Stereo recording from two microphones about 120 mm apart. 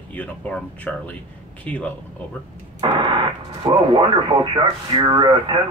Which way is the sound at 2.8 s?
40° right (ahead or behind).